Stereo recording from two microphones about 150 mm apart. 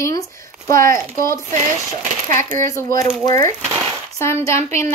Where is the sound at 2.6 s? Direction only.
20° left (ahead or behind).